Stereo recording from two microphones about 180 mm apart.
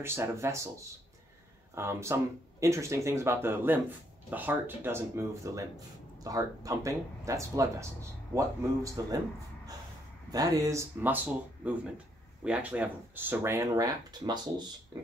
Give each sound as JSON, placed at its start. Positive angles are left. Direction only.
{"t": 0.0, "sound": "speech", "side_deg": -15}
{"t": 1.8, "sound": "speech", "side_deg": -15}
{"t": 10.3, "sound": "speech", "side_deg": -20}
{"t": 12.4, "sound": "speech", "side_deg": -5}